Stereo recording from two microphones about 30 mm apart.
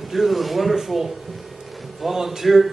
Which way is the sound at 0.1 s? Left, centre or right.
Centre.